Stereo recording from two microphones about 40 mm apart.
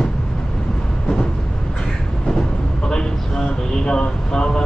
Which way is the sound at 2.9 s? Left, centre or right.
Centre.